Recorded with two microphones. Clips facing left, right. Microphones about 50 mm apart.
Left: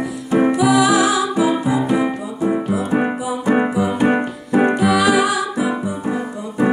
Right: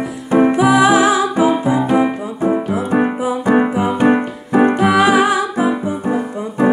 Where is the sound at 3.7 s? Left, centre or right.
Right.